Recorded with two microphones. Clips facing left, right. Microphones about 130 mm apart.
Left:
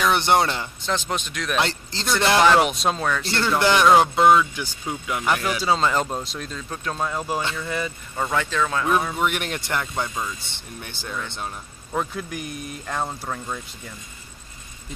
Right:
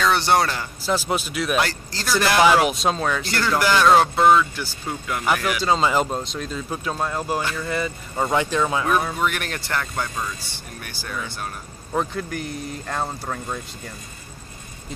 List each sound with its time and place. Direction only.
0.0 s speech: 20° left (ahead or behind)
0.8 s speech: 5° right (ahead or behind)
1.6 s speech: 20° left (ahead or behind)
2.3 s speech: 5° right (ahead or behind)
3.3 s speech: 25° left (ahead or behind)
5.8 s speech: 5° right (ahead or behind)
8.2 s speech: 20° right (ahead or behind)
9.1 s speech: 20° left (ahead or behind)
12.1 s speech: 5° left (ahead or behind)
12.9 s speech: centre (ahead or behind)